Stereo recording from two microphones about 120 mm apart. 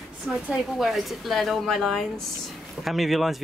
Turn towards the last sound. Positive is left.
turn(degrees=0)  # may be behind; listen again after turning